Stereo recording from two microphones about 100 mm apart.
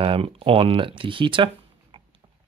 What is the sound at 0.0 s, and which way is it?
Speech, 70° right (ahead or behind).